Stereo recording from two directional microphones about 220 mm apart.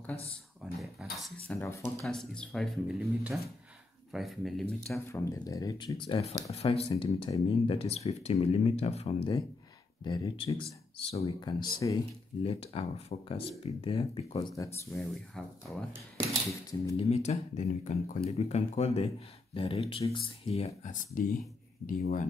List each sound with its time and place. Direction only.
0.6 s a sound: 5° right (ahead or behind)
1.5 s speech: 10° left (ahead or behind)
14.9 s speech: centre (ahead or behind)
16.9 s speech: 30° left (ahead or behind)